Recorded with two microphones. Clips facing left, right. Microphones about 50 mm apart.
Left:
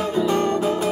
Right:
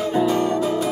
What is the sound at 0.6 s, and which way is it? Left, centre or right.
Music, centre.